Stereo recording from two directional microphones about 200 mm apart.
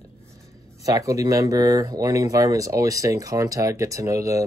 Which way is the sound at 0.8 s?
15° right (ahead or behind).